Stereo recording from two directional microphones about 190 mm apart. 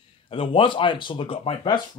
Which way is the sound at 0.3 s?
25° left (ahead or behind).